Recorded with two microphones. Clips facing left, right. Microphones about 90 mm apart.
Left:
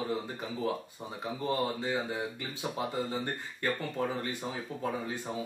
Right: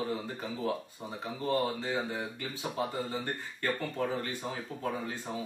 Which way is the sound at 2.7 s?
20° left (ahead or behind).